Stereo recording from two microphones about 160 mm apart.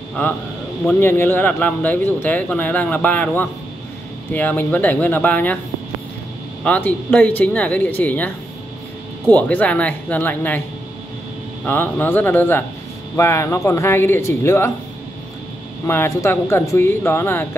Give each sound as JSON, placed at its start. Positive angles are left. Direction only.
{"t": 0.8, "sound": "speech", "side_deg": 15}
{"t": 6.6, "sound": "speech", "side_deg": 10}
{"t": 9.3, "sound": "speech", "side_deg": 10}
{"t": 11.6, "sound": "speech", "side_deg": 10}
{"t": 15.9, "sound": "speech", "side_deg": 15}